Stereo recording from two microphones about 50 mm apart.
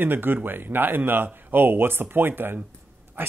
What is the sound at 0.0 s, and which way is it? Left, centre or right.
Speech, right.